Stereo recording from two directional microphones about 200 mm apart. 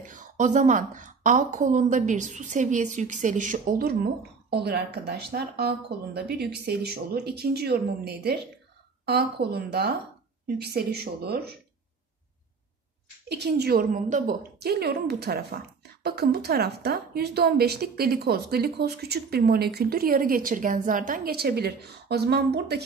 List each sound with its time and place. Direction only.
0.0 s a woman's voice: 40° right (ahead or behind)
13.3 s a woman's voice: 55° right (ahead or behind)